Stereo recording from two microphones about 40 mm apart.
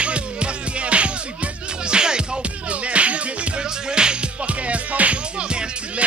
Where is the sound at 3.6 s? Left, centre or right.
Centre.